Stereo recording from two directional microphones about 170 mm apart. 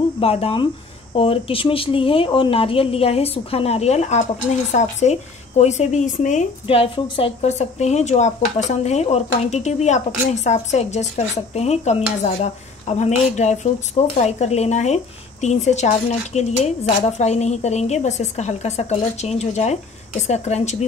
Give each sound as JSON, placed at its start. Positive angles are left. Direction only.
{"t": 0.2, "sound": "speech", "side_deg": 35}
{"t": 6.7, "sound": "speech", "side_deg": 30}